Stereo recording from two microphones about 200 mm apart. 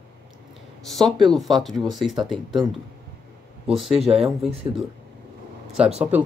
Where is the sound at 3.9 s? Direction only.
30° right (ahead or behind).